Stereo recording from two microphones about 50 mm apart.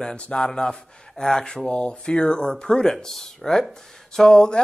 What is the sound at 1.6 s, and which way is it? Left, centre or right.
Speech, left.